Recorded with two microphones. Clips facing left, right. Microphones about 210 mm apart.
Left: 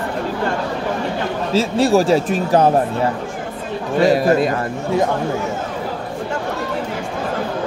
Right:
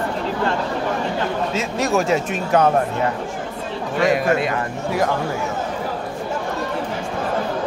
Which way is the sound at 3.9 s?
35° left (ahead or behind).